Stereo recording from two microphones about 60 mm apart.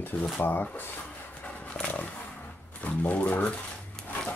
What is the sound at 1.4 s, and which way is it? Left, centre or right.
Dog, centre.